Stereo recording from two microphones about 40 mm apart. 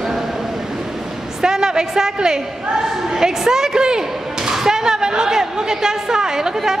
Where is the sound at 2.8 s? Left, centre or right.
Centre.